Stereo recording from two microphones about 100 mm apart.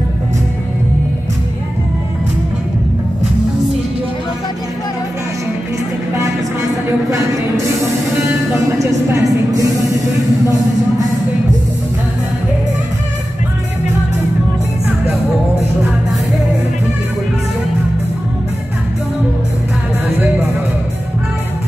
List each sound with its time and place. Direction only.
8.5 s vehicle: 30° right (ahead or behind)